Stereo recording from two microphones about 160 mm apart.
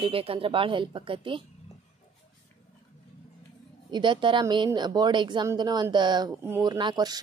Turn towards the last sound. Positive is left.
turn(degrees=-25)  # may be behind; listen again after turning